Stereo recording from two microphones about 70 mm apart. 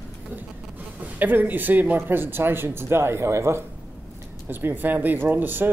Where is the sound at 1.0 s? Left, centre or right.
Right.